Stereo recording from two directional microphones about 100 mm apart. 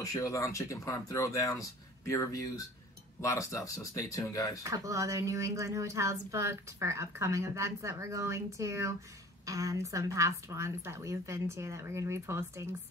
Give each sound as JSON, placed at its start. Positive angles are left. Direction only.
{"t": 0.0, "sound": "speech", "side_deg": 35}
{"t": 4.6, "sound": "speech", "side_deg": -30}